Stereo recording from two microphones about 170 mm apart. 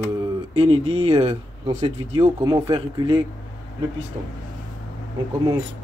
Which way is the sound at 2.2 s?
20° right (ahead or behind).